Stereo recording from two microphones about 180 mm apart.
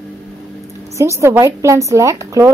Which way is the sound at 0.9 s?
15° right (ahead or behind).